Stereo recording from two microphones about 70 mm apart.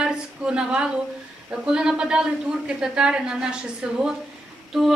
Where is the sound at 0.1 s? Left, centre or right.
Centre.